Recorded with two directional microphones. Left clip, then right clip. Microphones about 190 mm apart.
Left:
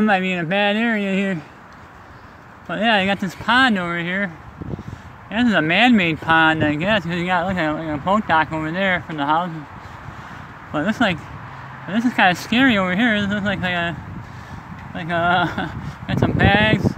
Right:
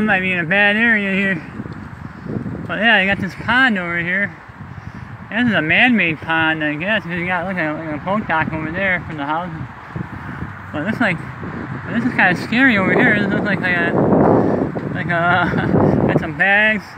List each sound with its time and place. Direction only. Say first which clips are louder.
0.0 s speech: right 2 dB; 15° left (ahead or behind)
2.7 s speech: right 4 dB; 10° left (ahead or behind)
5.3 s speech: right 2 dB; 15° left (ahead or behind)
11.0 s speech: right 2 dB; 10° left (ahead or behind)
15.0 s speech: right 2 dB; 5° left (ahead or behind)
16.1 s speech: right 3 dB; 15° left (ahead or behind)